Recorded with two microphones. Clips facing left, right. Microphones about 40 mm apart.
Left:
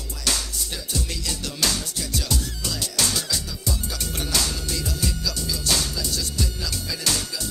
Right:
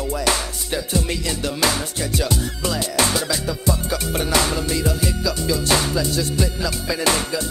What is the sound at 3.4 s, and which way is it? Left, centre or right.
Music, right.